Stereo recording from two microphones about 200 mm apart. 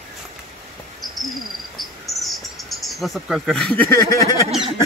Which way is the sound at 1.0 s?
Centre (ahead or behind).